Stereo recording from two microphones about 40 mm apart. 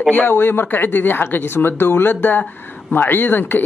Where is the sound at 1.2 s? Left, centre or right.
Left.